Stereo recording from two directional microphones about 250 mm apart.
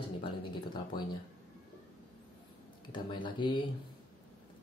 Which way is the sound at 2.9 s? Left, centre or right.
Centre.